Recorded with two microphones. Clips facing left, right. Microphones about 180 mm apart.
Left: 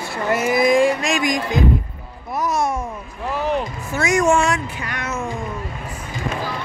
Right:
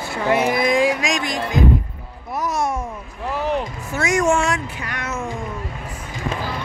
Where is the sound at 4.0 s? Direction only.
15° left (ahead or behind).